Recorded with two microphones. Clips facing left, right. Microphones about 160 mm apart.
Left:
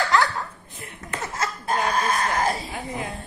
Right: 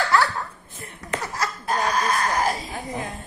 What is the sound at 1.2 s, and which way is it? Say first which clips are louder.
Laughter: left 2 dB; 25° left (ahead or behind).